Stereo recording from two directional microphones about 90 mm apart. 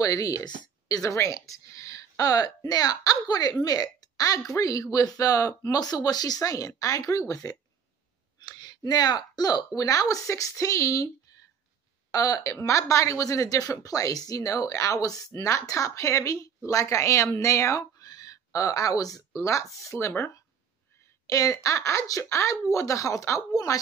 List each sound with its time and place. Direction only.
0.0 s a woman's voice: 40° left (ahead or behind)
12.1 s a woman's voice: 40° left (ahead or behind)